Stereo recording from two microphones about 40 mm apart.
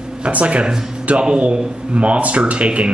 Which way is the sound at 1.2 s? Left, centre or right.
Right.